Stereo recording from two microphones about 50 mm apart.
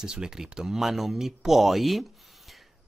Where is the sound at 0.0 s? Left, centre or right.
Centre.